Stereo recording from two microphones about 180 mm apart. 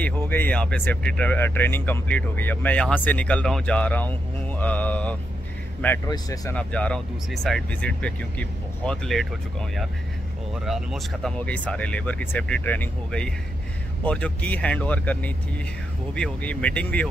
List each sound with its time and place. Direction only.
0.0 s speech: 10° left (ahead or behind)
6.0 s speech: 20° left (ahead or behind)
6.5 s speech: 5° left (ahead or behind)